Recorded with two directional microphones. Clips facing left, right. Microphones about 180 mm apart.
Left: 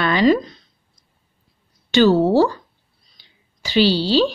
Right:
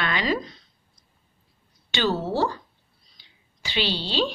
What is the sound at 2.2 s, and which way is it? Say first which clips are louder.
Speech: left 10 dB; 40° left (ahead or behind).